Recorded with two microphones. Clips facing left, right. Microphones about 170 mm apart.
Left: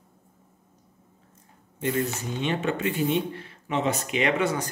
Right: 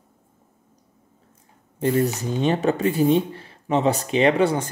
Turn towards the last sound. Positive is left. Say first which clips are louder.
# right 6 dB
turn(degrees=-30)  # may be behind; listen again after turning